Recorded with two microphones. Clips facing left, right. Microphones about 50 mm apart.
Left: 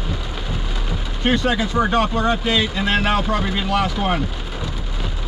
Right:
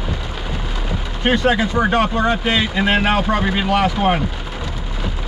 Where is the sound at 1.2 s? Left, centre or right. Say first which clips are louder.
Right 3 dB; right.